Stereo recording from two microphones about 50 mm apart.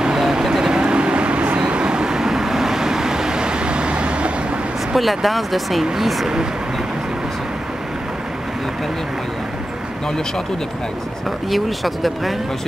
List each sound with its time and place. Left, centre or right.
0.0 s vehicle: centre
4.9 s speech: centre
11.5 s speech: centre